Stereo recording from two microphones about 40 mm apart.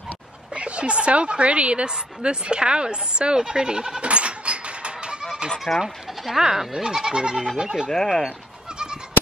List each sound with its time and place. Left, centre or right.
0.6 s a woman's voice: right
5.7 s speech: centre; by 7.9 s right
7.9 s speech: centre